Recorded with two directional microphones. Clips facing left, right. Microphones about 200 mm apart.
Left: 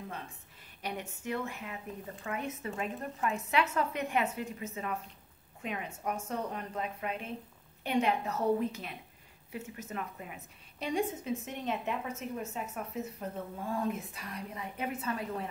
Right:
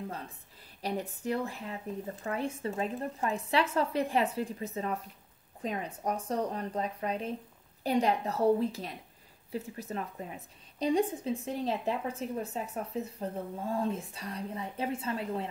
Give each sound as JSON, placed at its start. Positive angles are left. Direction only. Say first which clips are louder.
{"t": 0.8, "sound": "a woman's voice", "louder": "right 5 dB", "side_deg": -35}